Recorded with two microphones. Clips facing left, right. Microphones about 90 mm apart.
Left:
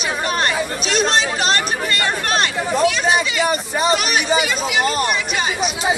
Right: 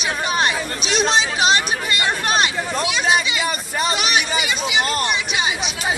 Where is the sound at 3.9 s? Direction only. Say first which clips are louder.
Left 3 dB; centre (ahead or behind).